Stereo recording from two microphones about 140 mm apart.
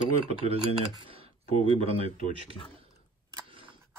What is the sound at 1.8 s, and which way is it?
Speech, 45° right (ahead or behind).